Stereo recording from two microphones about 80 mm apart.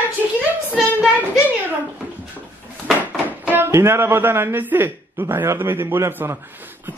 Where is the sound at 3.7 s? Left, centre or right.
Right.